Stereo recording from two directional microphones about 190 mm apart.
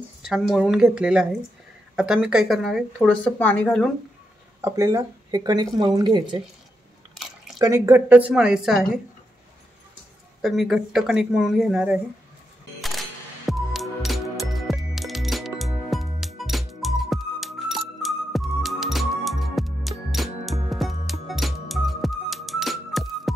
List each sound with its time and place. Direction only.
0.2 s speech: 5° right (ahead or behind)
4.6 s a woman's voice: 15° right (ahead or behind)
7.5 s a woman's voice: 20° right (ahead or behind)
10.4 s speech: centre (ahead or behind)
13.5 s music: centre (ahead or behind)